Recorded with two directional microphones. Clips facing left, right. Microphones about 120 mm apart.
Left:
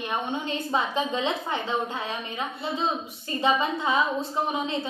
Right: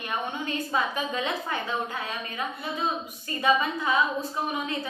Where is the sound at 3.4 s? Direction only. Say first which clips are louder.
Even; 25° left (ahead or behind).